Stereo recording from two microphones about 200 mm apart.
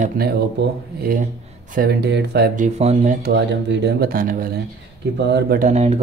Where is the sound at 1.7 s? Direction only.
55° right (ahead or behind); by 3.1 s 35° right (ahead or behind).